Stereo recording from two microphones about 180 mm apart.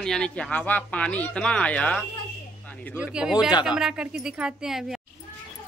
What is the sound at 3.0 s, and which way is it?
A man's voice, 5° right (ahead or behind).